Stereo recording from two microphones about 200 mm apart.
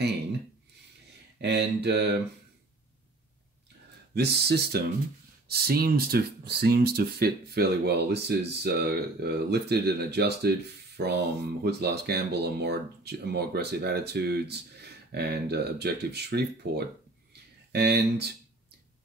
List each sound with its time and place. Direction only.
1.4 s speech: 55° right (ahead or behind)
4.1 s speech: 55° right (ahead or behind)
17.3 s a sound: 55° right (ahead or behind)